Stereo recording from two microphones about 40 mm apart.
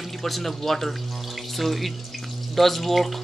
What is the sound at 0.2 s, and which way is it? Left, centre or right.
Speech, centre.